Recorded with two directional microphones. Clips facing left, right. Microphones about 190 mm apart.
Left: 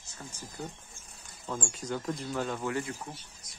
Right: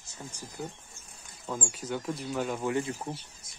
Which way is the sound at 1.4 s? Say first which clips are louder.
Right 1 dB; 5° right (ahead or behind).